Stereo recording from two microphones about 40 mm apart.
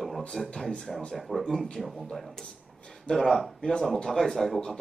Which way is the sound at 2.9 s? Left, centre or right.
Centre.